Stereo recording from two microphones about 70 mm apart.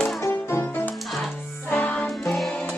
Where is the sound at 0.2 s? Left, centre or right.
Left.